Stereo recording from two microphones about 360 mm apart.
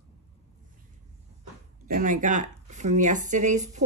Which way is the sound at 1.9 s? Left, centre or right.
Right.